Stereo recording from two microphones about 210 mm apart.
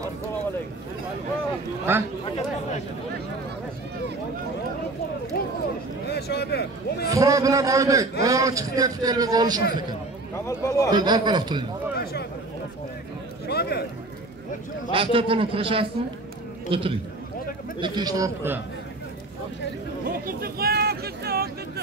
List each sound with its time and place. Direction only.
1.9 s a man's voice: 10° right (ahead or behind)
6.0 s speech: 50° left (ahead or behind)
7.1 s a man's voice: 15° right (ahead or behind)
10.3 s speech: 15° left (ahead or behind)
10.9 s a man's voice: 20° right (ahead or behind)
12.0 s a sound: 50° left (ahead or behind)
13.5 s speech: 50° left (ahead or behind)
14.9 s a man's voice: 25° right (ahead or behind)
20.1 s speech: 45° right (ahead or behind)